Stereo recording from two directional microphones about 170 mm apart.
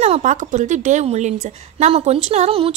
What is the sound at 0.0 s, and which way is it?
A woman's voice, 45° right (ahead or behind).